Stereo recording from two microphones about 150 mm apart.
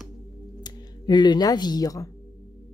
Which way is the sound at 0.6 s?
30° left (ahead or behind).